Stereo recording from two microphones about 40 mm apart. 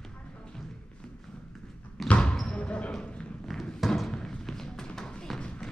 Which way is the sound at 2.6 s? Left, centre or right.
Left.